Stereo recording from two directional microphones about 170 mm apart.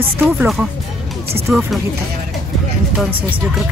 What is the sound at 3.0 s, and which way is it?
Speech, centre (ahead or behind).